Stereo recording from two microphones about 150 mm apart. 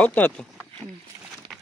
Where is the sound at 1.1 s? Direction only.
15° right (ahead or behind).